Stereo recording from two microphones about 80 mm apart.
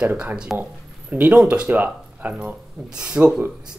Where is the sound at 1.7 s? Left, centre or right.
Right.